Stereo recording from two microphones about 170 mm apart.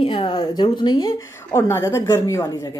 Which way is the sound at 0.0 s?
30° left (ahead or behind).